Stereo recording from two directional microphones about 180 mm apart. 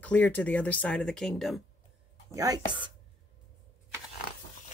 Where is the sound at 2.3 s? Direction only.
20° right (ahead or behind).